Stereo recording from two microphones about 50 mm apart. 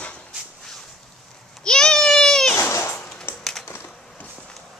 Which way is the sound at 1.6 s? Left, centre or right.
Centre.